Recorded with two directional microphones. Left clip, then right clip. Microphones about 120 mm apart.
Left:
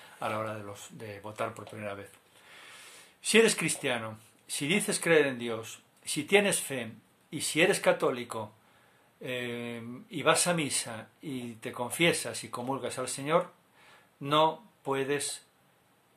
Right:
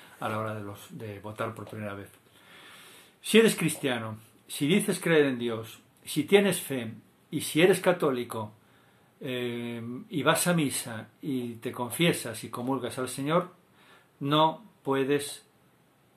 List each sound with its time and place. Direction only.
0.0 s speech: 20° left (ahead or behind)